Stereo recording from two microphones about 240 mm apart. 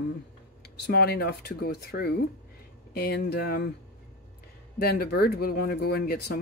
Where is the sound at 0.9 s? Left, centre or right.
Left.